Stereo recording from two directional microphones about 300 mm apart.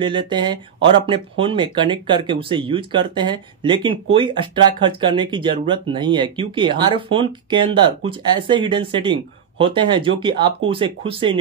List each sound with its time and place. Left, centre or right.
0.0 s speech: centre